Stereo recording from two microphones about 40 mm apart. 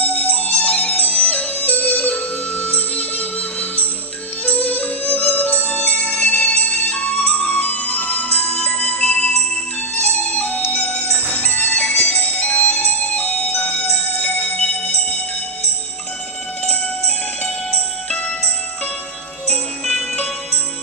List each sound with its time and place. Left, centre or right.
0.0 s music: left